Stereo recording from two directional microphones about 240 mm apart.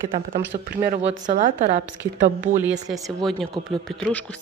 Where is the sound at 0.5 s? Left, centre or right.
Right.